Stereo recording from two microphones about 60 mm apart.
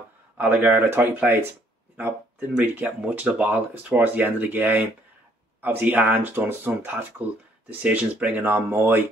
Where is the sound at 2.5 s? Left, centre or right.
Right.